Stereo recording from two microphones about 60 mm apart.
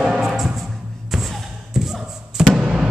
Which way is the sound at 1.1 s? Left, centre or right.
Centre.